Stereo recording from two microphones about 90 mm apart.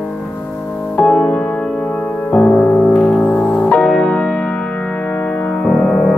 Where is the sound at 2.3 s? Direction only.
15° left (ahead or behind).